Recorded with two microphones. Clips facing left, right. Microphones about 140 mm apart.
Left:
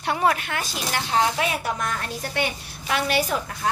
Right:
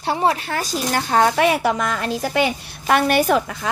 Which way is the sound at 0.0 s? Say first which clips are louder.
Right 3 dB; 30° right (ahead or behind).